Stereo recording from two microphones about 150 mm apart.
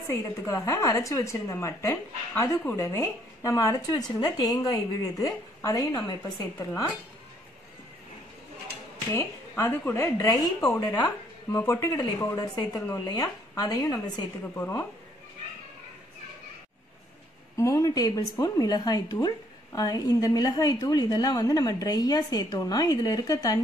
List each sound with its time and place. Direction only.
0.1 s a woman's voice: 20° left (ahead or behind)
9.1 s a woman's voice: 15° left (ahead or behind)
10.6 s speech: 10° left (ahead or behind)
11.5 s a woman's voice: 20° left (ahead or behind)
14.6 s speech: 15° left (ahead or behind)
17.6 s a woman's voice: 20° left (ahead or behind)